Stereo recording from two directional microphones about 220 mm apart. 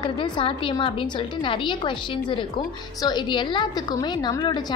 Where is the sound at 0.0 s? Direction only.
20° left (ahead or behind).